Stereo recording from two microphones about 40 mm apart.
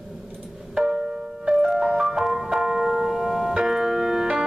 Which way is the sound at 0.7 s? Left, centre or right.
Centre.